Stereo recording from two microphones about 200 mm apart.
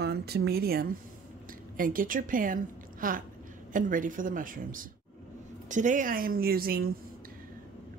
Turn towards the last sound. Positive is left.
turn(degrees=-50)  # may be behind; listen again after turning